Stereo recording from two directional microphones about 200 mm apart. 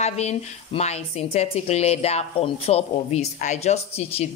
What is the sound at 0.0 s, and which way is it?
A woman's voice, 35° left (ahead or behind).